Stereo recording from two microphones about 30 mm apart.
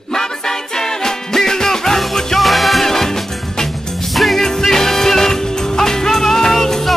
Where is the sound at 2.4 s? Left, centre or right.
Centre.